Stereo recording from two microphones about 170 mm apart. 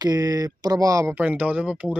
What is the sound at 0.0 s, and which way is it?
Speech, 20° right (ahead or behind).